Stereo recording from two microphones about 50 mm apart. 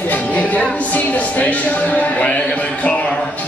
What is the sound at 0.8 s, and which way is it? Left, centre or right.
Speech, left.